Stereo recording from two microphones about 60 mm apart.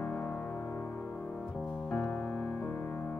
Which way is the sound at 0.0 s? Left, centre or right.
Left.